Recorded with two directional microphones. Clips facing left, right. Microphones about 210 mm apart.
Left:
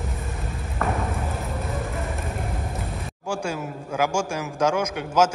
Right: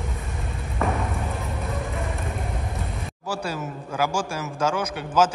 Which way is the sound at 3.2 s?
15° left (ahead or behind).